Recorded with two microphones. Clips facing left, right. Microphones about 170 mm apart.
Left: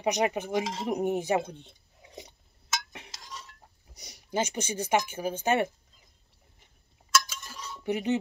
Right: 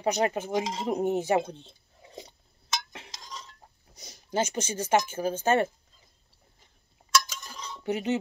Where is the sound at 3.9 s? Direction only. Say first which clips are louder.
Right 1 dB; 15° left (ahead or behind).